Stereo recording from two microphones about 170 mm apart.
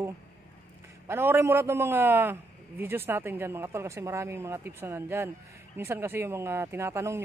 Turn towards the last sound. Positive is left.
turn(degrees=-15)  # may be behind; listen again after turning